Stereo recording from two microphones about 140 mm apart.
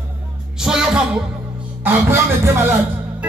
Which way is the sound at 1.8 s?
15° right (ahead or behind).